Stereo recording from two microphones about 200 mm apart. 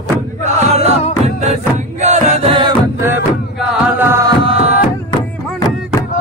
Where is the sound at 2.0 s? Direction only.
35° right (ahead or behind).